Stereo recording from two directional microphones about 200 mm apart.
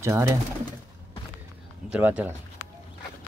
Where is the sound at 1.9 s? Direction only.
5° right (ahead or behind).